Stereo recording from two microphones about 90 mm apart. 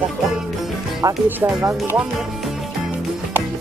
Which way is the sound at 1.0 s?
25° right (ahead or behind).